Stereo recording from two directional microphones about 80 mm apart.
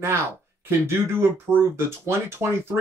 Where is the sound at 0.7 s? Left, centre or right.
Right.